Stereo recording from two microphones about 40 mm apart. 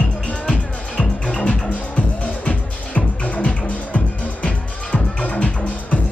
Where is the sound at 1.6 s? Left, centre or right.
Left.